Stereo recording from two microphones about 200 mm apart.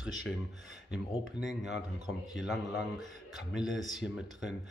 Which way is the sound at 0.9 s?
Centre (ahead or behind).